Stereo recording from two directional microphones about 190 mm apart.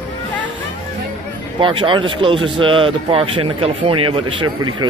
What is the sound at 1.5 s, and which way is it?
Speech, 25° right (ahead or behind).